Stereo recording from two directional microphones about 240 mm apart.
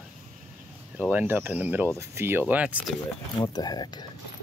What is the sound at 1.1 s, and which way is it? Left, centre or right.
Speech, centre.